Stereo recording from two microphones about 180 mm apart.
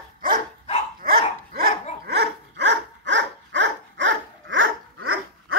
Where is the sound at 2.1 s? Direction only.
70° right (ahead or behind); by 4.7 s 90° right.